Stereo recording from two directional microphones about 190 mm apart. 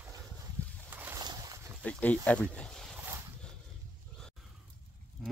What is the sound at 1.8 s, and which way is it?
Speech, 5° left (ahead or behind).